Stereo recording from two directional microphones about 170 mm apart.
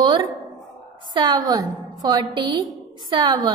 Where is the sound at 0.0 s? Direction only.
25° right (ahead or behind).